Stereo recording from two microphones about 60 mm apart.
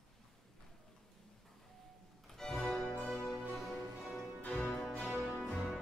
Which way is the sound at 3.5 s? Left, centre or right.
Centre.